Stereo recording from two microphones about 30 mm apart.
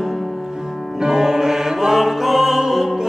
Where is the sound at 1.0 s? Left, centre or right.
Centre.